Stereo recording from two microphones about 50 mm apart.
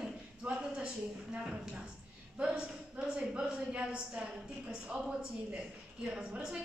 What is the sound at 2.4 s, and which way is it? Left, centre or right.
A woman's voice, right.